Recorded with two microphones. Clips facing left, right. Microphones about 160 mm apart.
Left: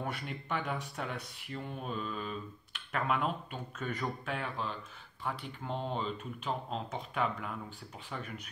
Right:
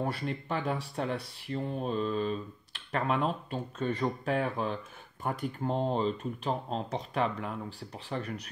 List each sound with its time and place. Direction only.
0.0 s speech: 30° right (ahead or behind)